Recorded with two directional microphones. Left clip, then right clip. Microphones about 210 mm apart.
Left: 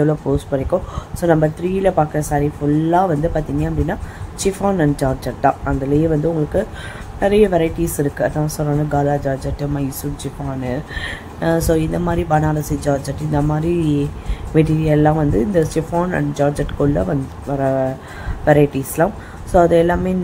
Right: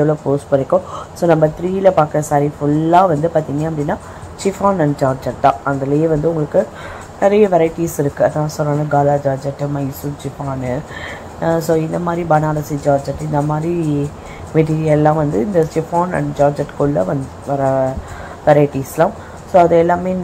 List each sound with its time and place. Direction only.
0.0 s speech: 10° left (ahead or behind)
10.7 s speech: 10° left (ahead or behind)